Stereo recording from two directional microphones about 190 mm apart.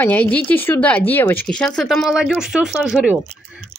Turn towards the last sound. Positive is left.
turn(degrees=-5)  # may be behind; listen again after turning